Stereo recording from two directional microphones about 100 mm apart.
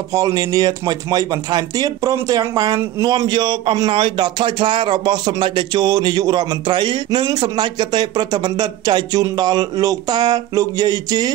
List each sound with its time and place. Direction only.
0.1 s speech: 35° right (ahead or behind)
3.2 s speech: 50° right (ahead or behind)